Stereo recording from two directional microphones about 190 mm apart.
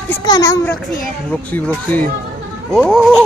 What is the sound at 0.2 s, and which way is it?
Speech, 20° left (ahead or behind).